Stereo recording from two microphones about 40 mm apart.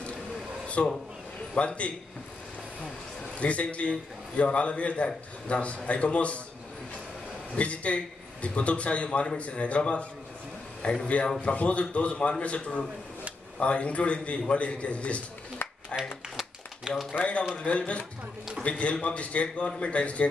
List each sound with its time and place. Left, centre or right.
0.8 s a man's voice: left
3.3 s a man's voice: left
7.5 s a man's voice: left
11.4 s a man's voice: left
15.6 s a sound: left
16.9 s speech: centre
17.2 s a man's voice: left